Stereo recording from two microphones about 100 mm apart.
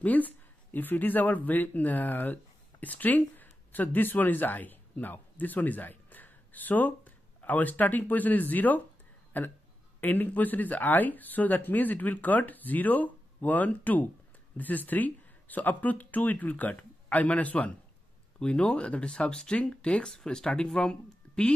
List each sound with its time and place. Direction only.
0.0 s speech: 15° left (ahead or behind)